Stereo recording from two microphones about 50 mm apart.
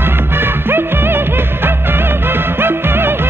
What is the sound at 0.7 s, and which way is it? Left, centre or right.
Music, right.